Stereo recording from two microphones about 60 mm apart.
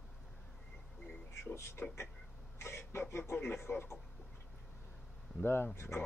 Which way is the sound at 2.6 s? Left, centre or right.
Left.